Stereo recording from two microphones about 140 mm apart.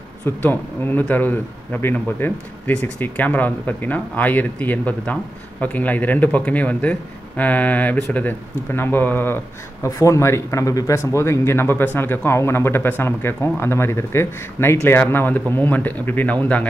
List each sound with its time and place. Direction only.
0.2 s a man's voice: 15° left (ahead or behind)